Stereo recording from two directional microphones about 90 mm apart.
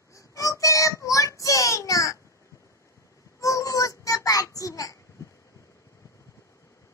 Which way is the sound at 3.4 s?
35° left (ahead or behind).